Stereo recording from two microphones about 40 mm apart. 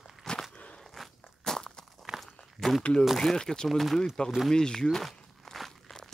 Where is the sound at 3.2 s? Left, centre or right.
Centre.